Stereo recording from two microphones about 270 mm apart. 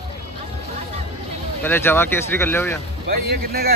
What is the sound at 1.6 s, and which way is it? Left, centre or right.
Speech, centre.